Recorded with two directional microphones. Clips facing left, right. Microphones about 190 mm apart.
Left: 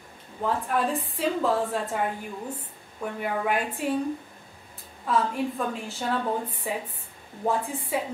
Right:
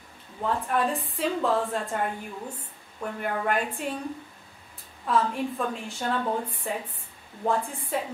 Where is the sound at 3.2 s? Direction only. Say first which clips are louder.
Even; 5° left (ahead or behind).